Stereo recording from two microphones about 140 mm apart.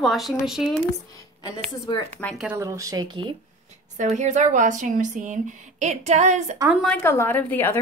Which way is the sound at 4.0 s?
60° right (ahead or behind).